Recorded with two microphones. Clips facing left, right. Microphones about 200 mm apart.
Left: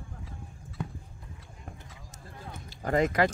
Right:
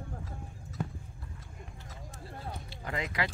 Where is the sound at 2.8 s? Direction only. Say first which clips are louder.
Left 10 dB; 45° left (ahead or behind).